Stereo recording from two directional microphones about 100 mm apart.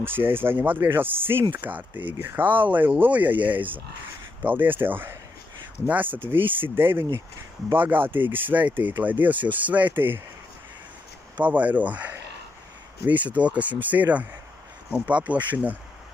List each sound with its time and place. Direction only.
0.0 s speech: 20° right (ahead or behind)
11.4 s speech: 15° right (ahead or behind)